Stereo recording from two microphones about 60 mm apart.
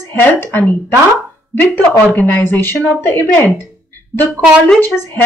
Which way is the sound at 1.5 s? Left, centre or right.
Left.